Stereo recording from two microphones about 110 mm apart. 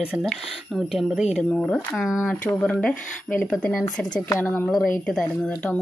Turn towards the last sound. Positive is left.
turn(degrees=10)  # may be behind; listen again after turning